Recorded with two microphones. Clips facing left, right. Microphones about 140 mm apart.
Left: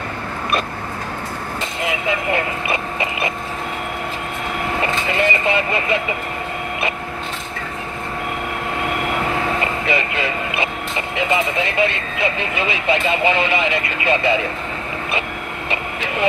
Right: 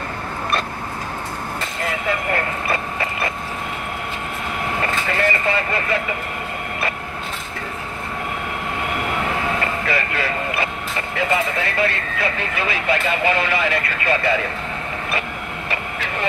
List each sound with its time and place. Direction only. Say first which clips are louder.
1.8 s vehicle: left 2 dB; 15° left (ahead or behind)
4.8 s speech: left 1 dB; 20° left (ahead or behind)
9.8 s speech: left 2 dB; 20° left (ahead or behind)